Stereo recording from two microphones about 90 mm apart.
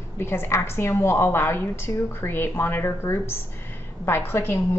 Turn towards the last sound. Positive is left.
turn(degrees=25)  # may be behind; listen again after turning